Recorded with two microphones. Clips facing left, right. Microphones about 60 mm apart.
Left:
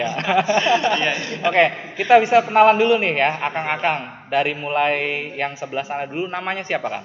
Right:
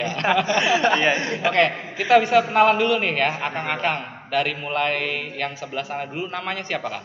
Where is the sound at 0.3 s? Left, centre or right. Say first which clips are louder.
Left 2 dB; centre.